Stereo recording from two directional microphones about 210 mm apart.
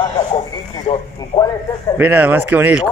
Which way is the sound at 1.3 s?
20° left (ahead or behind).